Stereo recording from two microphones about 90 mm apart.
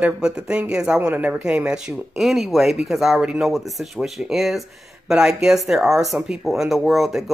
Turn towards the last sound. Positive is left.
turn(degrees=0)  # may be behind; listen again after turning